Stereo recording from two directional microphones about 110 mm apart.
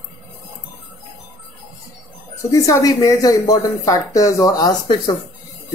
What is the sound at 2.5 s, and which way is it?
Speech, 30° left (ahead or behind).